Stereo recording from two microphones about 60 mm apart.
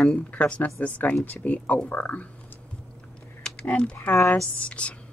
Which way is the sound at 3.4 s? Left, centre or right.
Centre.